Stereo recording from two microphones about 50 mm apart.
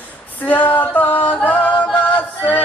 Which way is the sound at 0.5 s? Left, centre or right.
Left.